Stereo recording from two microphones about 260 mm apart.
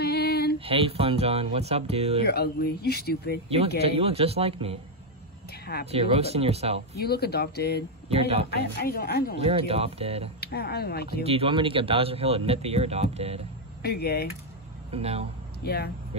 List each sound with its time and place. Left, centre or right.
0.0 s female singing: left
0.7 s a man's voice: right
2.2 s speech: left
3.8 s a man's voice: right
5.9 s a man's voice: right
7.0 s speech: left
8.1 s a man's voice: right
8.5 s speech: left
9.4 s a man's voice: right
10.4 s speech: left
11.2 s a man's voice: right
13.8 s speech: left
14.9 s a man's voice: right
15.6 s speech: left